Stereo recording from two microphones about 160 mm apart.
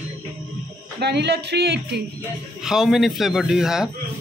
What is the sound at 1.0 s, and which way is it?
A man's voice, 90° right.